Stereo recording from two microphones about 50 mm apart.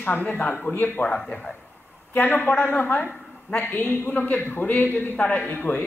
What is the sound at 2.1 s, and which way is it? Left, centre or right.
A woman's voice, left.